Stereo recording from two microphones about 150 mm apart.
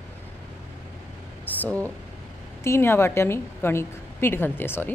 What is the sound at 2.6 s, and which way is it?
A woman's voice, 15° left (ahead or behind).